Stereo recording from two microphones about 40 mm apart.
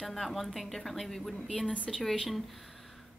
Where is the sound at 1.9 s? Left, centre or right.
Centre.